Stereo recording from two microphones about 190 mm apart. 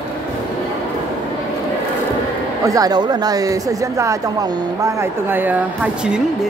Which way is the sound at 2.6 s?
20° right (ahead or behind).